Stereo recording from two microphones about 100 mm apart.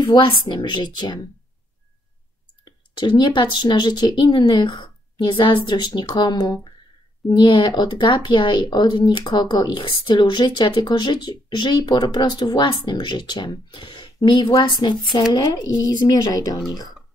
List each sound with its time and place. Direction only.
0.0 s speech: 55° left (ahead or behind)
3.0 s speech: 50° left (ahead or behind)